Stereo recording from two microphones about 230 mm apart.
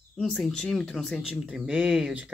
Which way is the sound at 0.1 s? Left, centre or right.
Centre.